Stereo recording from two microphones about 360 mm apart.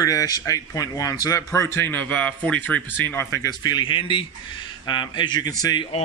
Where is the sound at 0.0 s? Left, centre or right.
Centre.